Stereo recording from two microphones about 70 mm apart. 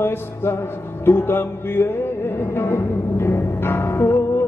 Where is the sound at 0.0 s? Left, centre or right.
Left.